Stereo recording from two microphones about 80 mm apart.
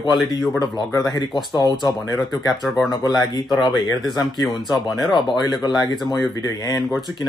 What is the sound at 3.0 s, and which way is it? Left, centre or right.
Speech, left.